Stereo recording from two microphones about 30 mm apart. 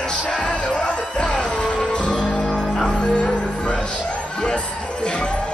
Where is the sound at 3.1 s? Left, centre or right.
Left.